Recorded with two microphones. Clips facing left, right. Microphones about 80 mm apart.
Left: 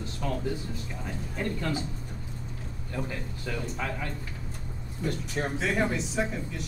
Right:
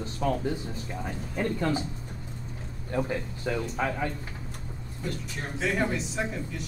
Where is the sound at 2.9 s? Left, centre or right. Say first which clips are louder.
Right 6 dB; right.